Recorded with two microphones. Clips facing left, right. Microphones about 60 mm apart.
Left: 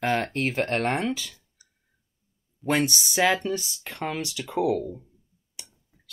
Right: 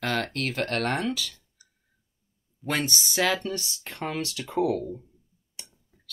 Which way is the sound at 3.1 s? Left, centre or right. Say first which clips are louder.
Left 3 dB; centre.